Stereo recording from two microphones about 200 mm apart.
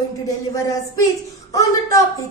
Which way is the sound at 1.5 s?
15° left (ahead or behind).